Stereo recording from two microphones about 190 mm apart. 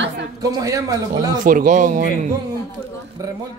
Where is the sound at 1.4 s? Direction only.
45° right (ahead or behind).